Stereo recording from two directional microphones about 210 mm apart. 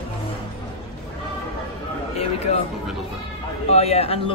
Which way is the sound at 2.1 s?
30° left (ahead or behind).